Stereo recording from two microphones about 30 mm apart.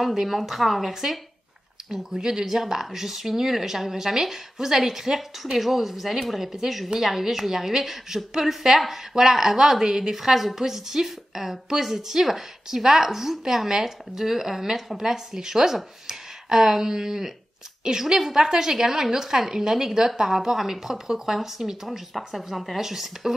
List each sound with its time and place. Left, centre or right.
0.1 s speech: centre
2.1 s a woman's voice: centre
20.2 s speech: centre
22.8 s speech: centre